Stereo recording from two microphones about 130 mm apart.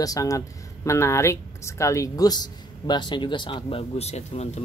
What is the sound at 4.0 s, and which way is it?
Speech, 55° left (ahead or behind).